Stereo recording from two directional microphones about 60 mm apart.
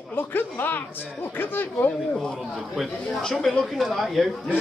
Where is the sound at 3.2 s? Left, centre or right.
Centre.